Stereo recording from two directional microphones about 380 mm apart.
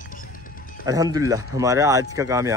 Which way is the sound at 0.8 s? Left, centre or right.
Centre.